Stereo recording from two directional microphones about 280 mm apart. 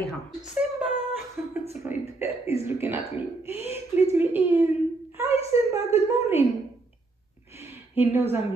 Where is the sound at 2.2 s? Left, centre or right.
Left.